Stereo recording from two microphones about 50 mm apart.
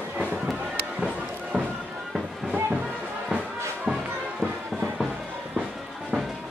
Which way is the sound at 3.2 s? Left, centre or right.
Centre.